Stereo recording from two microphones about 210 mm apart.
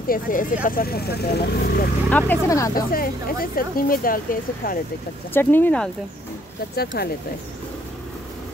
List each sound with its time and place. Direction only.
0.1 s speech: 40° left (ahead or behind)
2.0 s speech: 10° left (ahead or behind)
2.7 s speech: 45° left (ahead or behind)
5.3 s speech: 10° left (ahead or behind)
6.7 s speech: 50° left (ahead or behind)